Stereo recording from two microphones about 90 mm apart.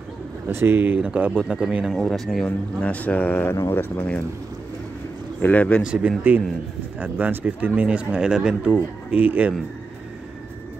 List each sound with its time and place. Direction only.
0.5 s speech: 25° right (ahead or behind); by 1.9 s 10° right (ahead or behind)
1.9 s speech: centre (ahead or behind)
2.4 s speech: 15° left (ahead or behind)
5.4 s speech: 15° left (ahead or behind)
5.8 s speech: 10° right (ahead or behind)
8.7 s speech: 20° right (ahead or behind)